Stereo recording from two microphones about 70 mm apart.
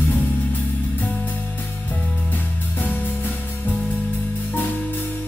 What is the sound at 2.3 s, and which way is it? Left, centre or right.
Music, left.